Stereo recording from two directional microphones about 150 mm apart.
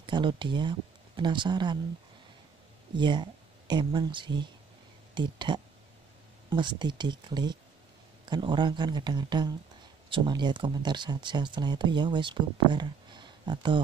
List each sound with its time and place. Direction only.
0.0 s speech: 30° right (ahead or behind)
3.0 s speech: 30° right (ahead or behind)